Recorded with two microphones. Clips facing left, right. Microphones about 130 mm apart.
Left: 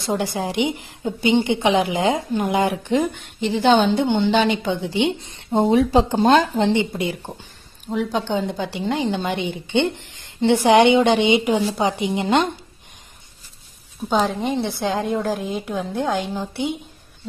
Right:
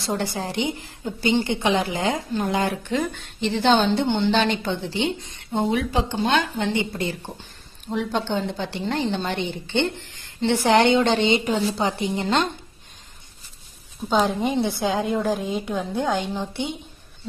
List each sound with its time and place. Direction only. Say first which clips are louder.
0.0 s speech: left 3 dB; 10° left (ahead or behind)
5.2 s a woman's voice: left 5 dB; 25° left (ahead or behind)
7.9 s speech: left 2 dB; 5° left (ahead or behind)
14.0 s a woman's voice: left 1 dB; centre (ahead or behind)